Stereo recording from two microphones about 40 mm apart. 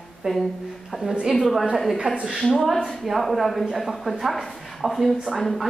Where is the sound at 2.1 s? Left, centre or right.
Centre.